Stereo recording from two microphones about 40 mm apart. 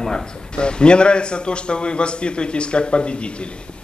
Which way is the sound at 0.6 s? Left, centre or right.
Left.